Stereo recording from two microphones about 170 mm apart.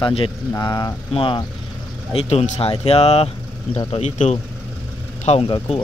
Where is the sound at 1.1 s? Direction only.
30° left (ahead or behind).